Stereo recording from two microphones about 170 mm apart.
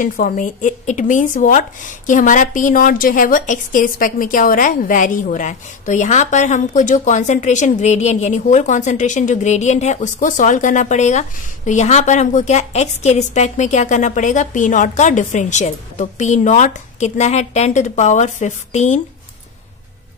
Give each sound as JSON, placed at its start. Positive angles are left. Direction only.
{"t": 0.0, "sound": "speech", "side_deg": 50}